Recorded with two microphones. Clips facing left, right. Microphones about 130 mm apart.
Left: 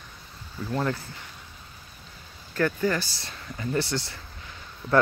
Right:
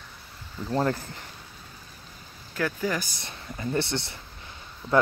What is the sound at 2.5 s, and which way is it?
Speech, 10° right (ahead or behind).